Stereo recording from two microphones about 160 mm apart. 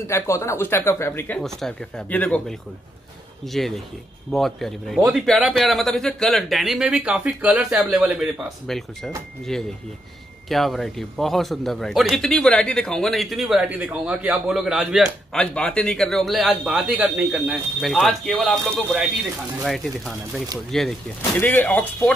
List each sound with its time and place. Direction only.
0.0 s speech: 15° left (ahead or behind)
1.4 s a man's voice: 5° left (ahead or behind)